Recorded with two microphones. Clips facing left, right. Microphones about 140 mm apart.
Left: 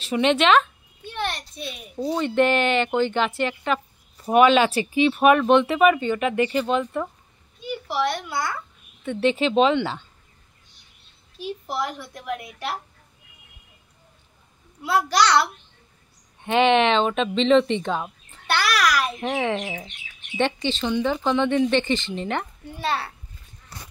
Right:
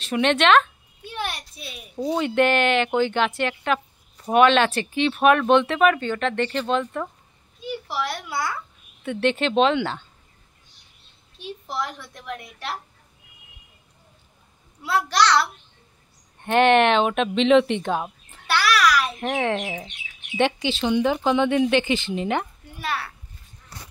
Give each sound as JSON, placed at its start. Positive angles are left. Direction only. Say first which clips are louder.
{"t": 0.0, "sound": "speech", "louder": "even", "side_deg": 5}
{"t": 1.0, "sound": "a child's voice", "louder": "left 2 dB", "side_deg": -10}
{"t": 11.3, "sound": "speech", "louder": "left 2 dB", "side_deg": 5}
{"t": 14.8, "sound": "speech", "louder": "left 1 dB", "side_deg": 0}
{"t": 22.8, "sound": "a child's voice", "louder": "left 3 dB", "side_deg": 30}